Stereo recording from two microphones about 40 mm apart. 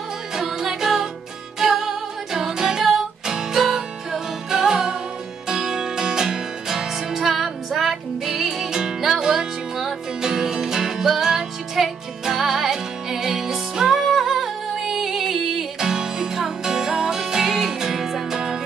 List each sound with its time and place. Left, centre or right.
0.4 s music: centre